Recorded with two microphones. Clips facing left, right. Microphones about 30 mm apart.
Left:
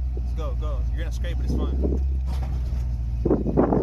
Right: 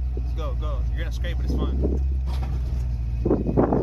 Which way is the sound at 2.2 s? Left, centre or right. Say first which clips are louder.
Right 1 dB; right.